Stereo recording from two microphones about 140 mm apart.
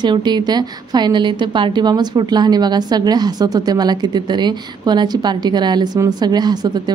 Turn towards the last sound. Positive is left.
turn(degrees=-30)  # may be behind; listen again after turning